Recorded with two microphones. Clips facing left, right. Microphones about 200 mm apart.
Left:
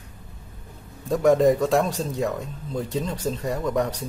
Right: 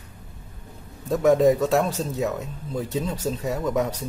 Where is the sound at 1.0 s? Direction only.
Centre (ahead or behind).